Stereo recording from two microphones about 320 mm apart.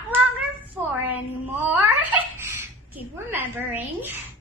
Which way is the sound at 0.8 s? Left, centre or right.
Centre.